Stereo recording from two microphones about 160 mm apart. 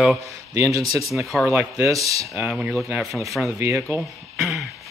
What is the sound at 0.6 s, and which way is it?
Speech, 20° right (ahead or behind).